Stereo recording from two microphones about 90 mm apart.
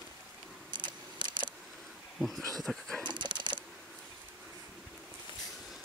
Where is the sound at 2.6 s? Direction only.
Centre (ahead or behind).